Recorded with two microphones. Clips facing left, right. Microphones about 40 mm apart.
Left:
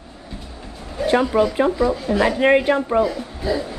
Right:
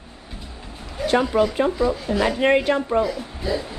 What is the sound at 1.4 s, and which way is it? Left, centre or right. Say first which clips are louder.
Speech: left 2 dB; centre.